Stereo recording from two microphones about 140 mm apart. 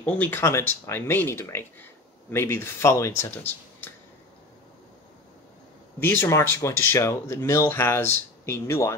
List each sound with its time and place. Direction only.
0.0 s speech: 10° left (ahead or behind)
5.9 s speech: 15° left (ahead or behind)